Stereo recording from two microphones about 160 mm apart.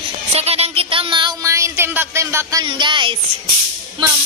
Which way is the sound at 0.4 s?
40° right (ahead or behind).